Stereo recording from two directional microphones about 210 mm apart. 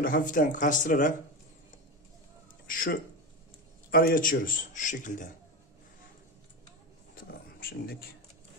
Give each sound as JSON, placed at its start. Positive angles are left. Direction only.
{"t": 0.0, "sound": "a man's voice", "side_deg": 40}
{"t": 2.6, "sound": "a man's voice", "side_deg": 40}
{"t": 7.2, "sound": "a sound", "side_deg": 45}